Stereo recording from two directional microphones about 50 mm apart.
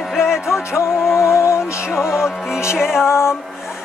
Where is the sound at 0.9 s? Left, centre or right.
Centre.